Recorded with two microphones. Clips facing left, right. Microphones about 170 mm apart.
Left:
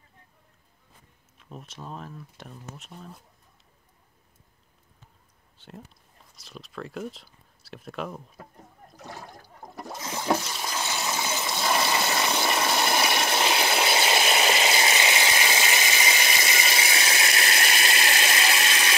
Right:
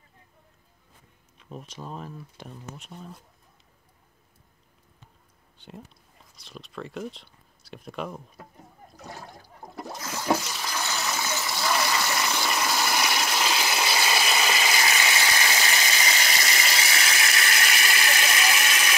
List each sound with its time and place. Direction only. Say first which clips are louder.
1.4 s speech: right 2 dB; centre (ahead or behind)
6.3 s speech: even; centre (ahead or behind)
8.9 s a sound: even; centre (ahead or behind)
10.6 s water: even; 20° left (ahead or behind)